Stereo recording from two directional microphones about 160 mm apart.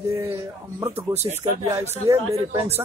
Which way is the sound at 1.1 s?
40° right (ahead or behind).